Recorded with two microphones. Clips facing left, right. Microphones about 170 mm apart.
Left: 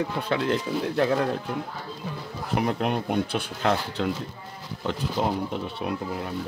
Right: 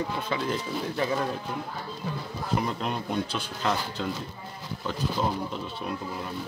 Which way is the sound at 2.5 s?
65° left (ahead or behind).